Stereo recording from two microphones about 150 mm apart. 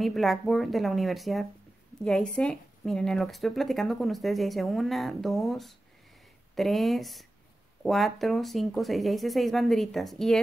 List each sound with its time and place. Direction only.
0.0 s speech: centre (ahead or behind)